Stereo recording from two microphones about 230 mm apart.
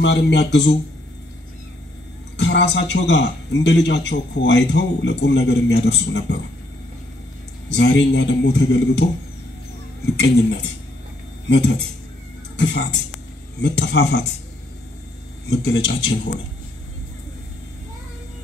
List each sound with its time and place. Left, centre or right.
0.0 s a man's voice: left
2.3 s a man's voice: left
7.7 s a man's voice: left
11.4 s speech: left
15.6 s a man's voice: left